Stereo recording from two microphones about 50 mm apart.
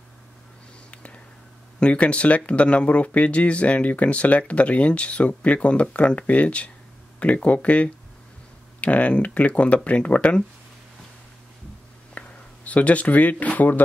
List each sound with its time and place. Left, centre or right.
1.8 s speech: left
12.1 s speech: left